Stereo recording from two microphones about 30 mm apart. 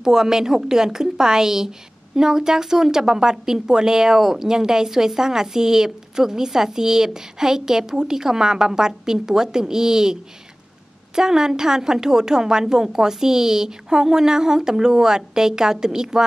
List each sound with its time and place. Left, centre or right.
0.0 s a woman's voice: centre
11.1 s a woman's voice: right